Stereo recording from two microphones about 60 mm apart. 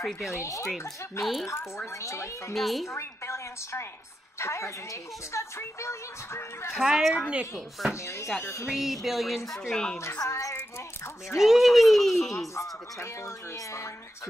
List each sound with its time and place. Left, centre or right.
0.2 s speech: left
1.2 s speech: centre
2.0 s a woman's voice: left
2.5 s speech: centre
2.9 s speech: left
6.8 s speech: centre
7.9 s speech: left
8.6 s speech: centre
9.5 s speech: centre
10.3 s speech: left
11.3 s speech: centre